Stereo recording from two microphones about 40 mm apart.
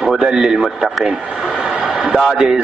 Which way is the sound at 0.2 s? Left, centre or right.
Centre.